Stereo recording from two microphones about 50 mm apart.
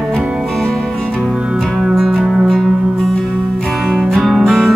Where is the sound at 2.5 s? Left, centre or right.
Centre.